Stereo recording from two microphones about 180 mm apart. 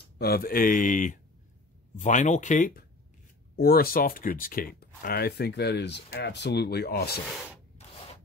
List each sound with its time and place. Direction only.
0.2 s speech: 55° left (ahead or behind)
3.5 s speech: 55° left (ahead or behind)